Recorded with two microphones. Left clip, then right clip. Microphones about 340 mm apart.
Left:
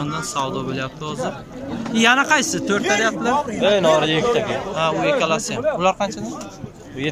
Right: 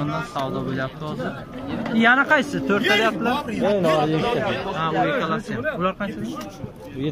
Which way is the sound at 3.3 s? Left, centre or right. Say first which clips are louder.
Left 5 dB; left.